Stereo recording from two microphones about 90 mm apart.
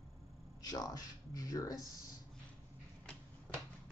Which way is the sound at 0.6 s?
45° left (ahead or behind).